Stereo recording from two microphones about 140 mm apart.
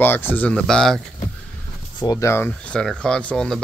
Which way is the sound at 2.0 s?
25° left (ahead or behind).